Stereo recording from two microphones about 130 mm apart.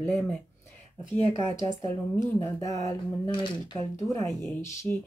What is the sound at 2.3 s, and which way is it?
Speech, 25° left (ahead or behind).